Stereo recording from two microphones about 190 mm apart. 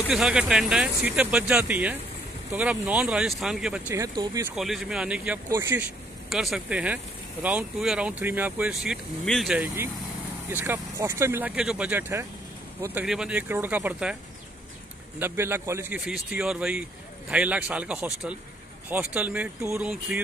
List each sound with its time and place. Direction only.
0.1 s speech: 5° right (ahead or behind)
3.9 s speech: 20° right (ahead or behind)
4.6 s speech: centre (ahead or behind)
6.3 s speech: centre (ahead or behind)
15.1 s speech: 10° right (ahead or behind)